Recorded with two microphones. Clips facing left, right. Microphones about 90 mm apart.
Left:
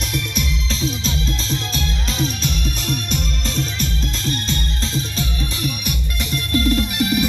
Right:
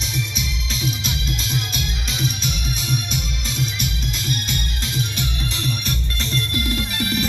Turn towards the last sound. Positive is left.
turn(degrees=25)  # may be behind; listen again after turning